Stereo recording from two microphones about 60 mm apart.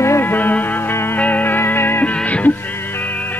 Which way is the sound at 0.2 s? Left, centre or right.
Left.